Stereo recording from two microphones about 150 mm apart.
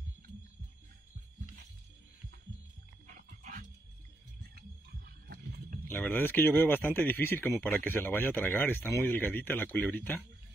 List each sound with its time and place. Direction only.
3.1 s music: 65° right (ahead or behind)
4.6 s a sound: 85° right
5.9 s speech: 15° left (ahead or behind)